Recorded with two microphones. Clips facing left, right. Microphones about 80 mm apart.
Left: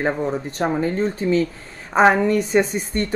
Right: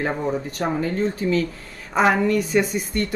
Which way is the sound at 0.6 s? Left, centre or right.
Left.